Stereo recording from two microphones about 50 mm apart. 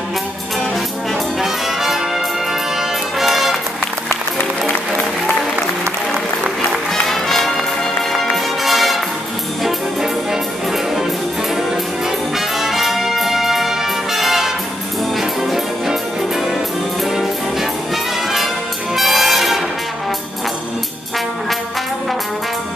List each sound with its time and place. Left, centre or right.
1.4 s brass instrument: centre
3.2 s music: centre
6.9 s music: centre
12.4 s brass instrument: centre
15.1 s music: centre
17.1 s brass instrument: centre
18.9 s brass instrument: centre